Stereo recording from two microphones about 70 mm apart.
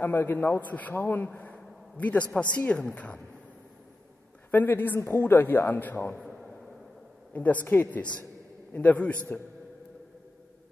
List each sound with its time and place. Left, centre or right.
0.0 s a man's voice: left
4.5 s a man's voice: left
6.1 s a sound: centre
7.3 s a man's voice: left